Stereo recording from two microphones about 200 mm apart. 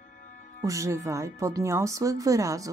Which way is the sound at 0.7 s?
15° right (ahead or behind).